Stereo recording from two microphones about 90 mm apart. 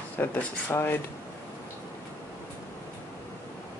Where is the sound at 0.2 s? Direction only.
20° left (ahead or behind).